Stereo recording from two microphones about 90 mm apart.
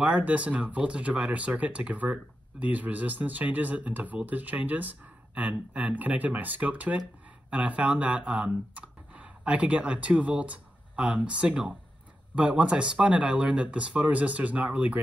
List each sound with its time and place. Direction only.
0.0 s speech: 15° right (ahead or behind)